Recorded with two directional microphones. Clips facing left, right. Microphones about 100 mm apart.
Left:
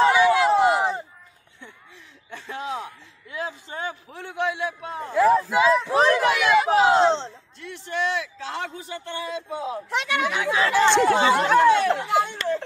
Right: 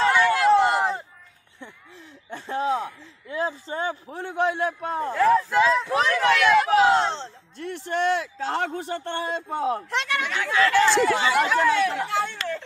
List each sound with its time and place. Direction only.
0.0 s a sound: 10° left (ahead or behind)
2.3 s a man's voice: 35° right (ahead or behind)
5.5 s speech: 5° left (ahead or behind)
7.5 s speech: 50° right (ahead or behind)
9.8 s speech: 5° left (ahead or behind)
11.1 s speech: 30° left (ahead or behind)
12.1 s speech: 15° left (ahead or behind)